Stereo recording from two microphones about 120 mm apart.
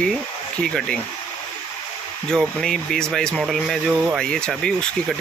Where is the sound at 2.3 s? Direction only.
5° left (ahead or behind).